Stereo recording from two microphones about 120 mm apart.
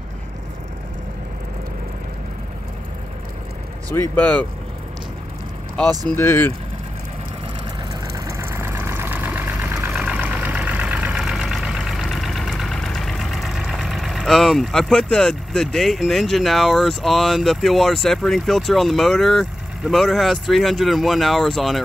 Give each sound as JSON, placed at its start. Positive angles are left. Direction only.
{"t": 3.9, "sound": "speech", "side_deg": 15}
{"t": 6.0, "sound": "speech", "side_deg": 20}
{"t": 8.3, "sound": "vehicle", "side_deg": -20}